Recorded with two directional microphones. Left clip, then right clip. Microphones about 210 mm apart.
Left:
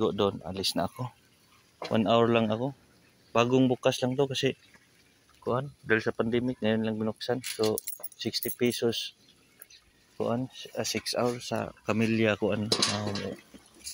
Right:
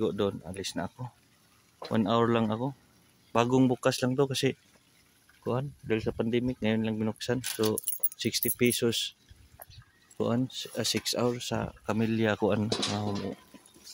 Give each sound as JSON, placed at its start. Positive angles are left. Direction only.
{"t": 0.0, "sound": "speech", "side_deg": -15}
{"t": 1.9, "sound": "speech", "side_deg": -20}
{"t": 10.1, "sound": "speech", "side_deg": -45}
{"t": 11.8, "sound": "speech", "side_deg": -15}